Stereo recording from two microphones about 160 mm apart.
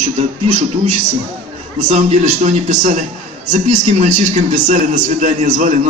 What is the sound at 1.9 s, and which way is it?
A man's voice, 45° right (ahead or behind).